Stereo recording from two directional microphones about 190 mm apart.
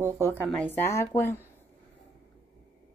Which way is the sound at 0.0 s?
10° right (ahead or behind).